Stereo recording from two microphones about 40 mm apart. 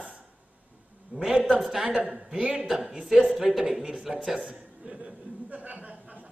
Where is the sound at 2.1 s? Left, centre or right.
Centre.